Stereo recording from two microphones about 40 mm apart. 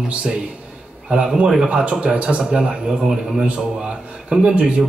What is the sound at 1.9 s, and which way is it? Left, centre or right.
A man's voice, right.